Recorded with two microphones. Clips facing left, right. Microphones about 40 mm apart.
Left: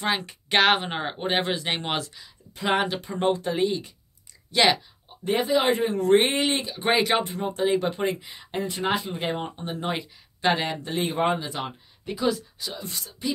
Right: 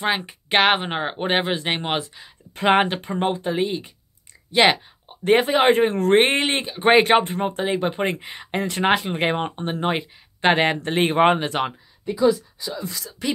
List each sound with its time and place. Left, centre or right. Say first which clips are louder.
0.0 s speech: right 3 dB; right
2.5 s speech: right 6 dB; right
3.2 s speech: even; right
5.2 s speech: right 6 dB; right
5.6 s speech: right 6 dB; right
7.6 s speech: left 2 dB; right
8.1 s speech: right 4 dB; right
13.2 s speech: right 4 dB; right